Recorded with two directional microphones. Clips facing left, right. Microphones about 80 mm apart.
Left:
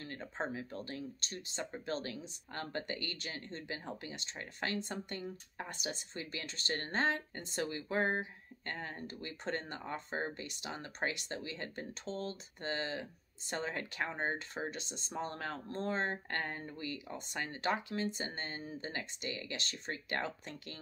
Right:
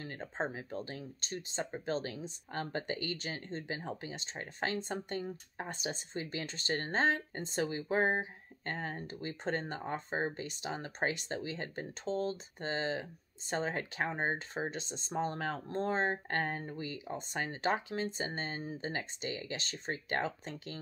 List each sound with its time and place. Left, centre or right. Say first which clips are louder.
0.0 s speech: right 3 dB; right